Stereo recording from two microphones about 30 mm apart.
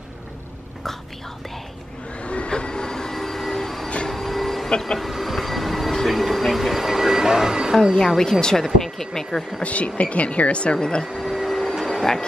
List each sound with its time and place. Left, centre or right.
2.2 s train: left
2.5 s train: left
4.1 s printer: centre
4.6 s speech: left
4.9 s train: centre
6.0 s a sound: centre
7.8 s speech: centre
9.6 s speech: left
11.1 s a sound: centre
11.7 s music: centre